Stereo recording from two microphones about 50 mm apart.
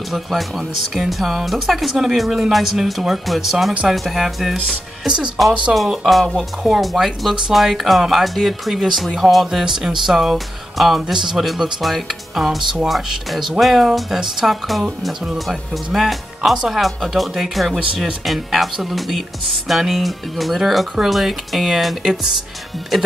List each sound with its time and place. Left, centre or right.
0.1 s speech: centre
5.0 s speech: centre
6.0 s speech: centre